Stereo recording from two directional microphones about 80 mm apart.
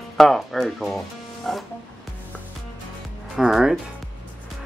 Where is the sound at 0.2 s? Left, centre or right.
Centre.